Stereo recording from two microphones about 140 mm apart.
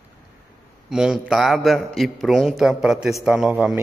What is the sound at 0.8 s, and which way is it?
A man's voice, 5° right (ahead or behind).